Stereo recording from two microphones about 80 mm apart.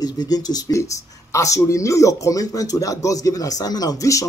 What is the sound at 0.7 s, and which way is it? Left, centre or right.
Speech, left.